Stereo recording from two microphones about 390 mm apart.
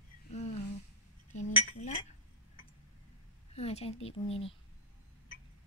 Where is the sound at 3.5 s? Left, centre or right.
Centre.